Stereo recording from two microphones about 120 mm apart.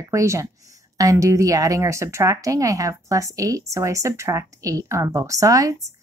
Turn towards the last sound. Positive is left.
turn(degrees=-30)  # may be behind; listen again after turning